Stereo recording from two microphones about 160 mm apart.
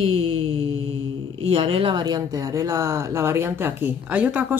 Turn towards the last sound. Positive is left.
turn(degrees=-10)  # may be behind; listen again after turning